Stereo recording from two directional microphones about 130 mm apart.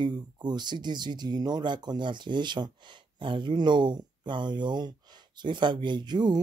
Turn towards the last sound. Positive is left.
turn(degrees=-35)  # may be behind; listen again after turning